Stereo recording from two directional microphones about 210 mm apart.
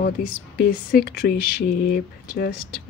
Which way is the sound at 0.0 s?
45° left (ahead or behind).